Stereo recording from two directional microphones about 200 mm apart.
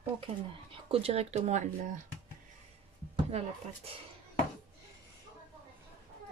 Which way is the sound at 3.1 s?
30° right (ahead or behind).